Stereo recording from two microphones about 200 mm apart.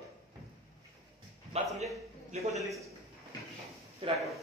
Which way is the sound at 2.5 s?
Centre (ahead or behind).